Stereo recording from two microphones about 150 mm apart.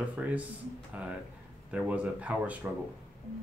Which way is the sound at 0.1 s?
10° right (ahead or behind).